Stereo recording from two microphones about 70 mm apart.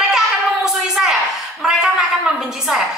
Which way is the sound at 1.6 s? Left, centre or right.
Centre.